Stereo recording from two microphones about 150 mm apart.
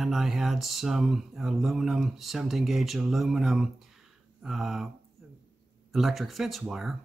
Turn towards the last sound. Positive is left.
turn(degrees=-5)  # may be behind; listen again after turning